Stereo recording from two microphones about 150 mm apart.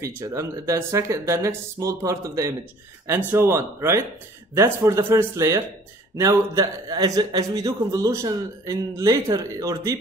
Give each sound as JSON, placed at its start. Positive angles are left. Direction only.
{"t": 0.0, "sound": "a man's voice", "side_deg": -20}